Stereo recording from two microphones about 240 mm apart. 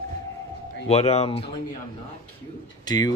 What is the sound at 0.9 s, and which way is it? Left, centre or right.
Speech, left.